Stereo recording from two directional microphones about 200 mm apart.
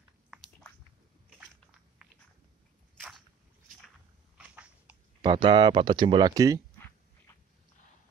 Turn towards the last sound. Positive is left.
turn(degrees=-20)  # may be behind; listen again after turning